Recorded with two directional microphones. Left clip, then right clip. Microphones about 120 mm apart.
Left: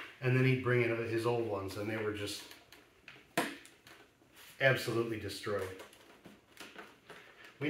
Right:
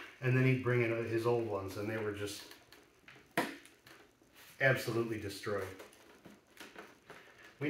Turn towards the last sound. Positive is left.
turn(degrees=15)  # may be behind; listen again after turning